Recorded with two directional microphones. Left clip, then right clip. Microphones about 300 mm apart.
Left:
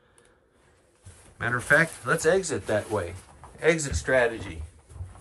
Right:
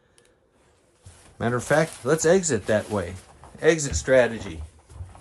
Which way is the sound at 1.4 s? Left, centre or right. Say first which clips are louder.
Even; centre.